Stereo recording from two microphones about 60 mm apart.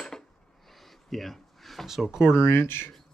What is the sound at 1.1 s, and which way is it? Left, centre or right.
Speech, centre.